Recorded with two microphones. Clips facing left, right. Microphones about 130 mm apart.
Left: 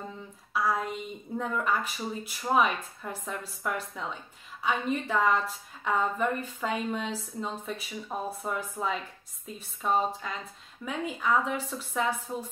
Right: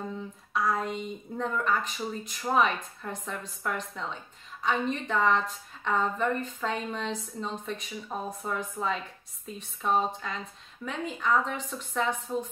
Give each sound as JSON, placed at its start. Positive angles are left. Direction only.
{"t": 0.5, "sound": "a woman's voice", "side_deg": 5}